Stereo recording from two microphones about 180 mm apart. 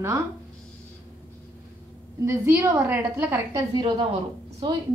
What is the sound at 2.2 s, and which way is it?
A woman's voice, 15° right (ahead or behind).